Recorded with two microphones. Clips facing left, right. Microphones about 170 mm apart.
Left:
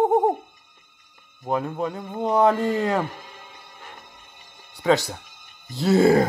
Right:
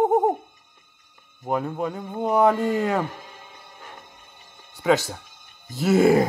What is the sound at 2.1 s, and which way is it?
Speech, 10° right (ahead or behind).